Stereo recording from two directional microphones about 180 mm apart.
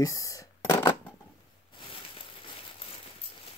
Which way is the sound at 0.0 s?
20° left (ahead or behind).